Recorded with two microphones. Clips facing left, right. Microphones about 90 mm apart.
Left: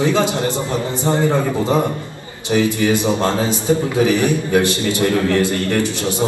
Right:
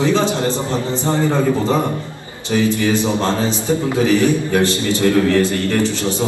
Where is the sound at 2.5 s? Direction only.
20° left (ahead or behind).